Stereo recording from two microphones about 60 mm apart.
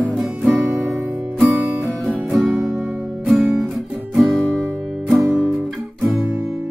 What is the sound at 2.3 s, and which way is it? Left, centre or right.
Music, centre.